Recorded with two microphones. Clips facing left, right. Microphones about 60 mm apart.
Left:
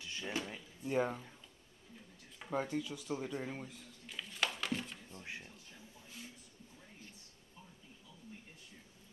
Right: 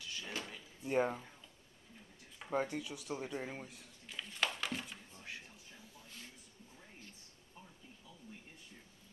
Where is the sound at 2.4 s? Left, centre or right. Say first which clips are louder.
Even; centre.